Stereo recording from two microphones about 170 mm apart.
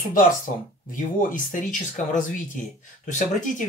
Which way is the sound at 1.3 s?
50° left (ahead or behind).